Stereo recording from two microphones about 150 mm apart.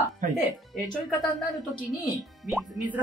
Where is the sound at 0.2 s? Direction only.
60° right (ahead or behind).